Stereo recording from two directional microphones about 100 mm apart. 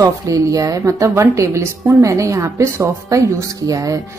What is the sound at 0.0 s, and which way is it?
A woman's voice, 35° right (ahead or behind).